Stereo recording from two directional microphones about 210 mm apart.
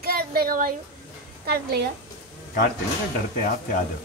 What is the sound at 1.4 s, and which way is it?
Speech, 50° right (ahead or behind).